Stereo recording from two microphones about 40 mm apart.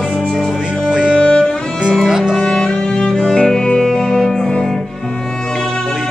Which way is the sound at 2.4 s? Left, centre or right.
Centre.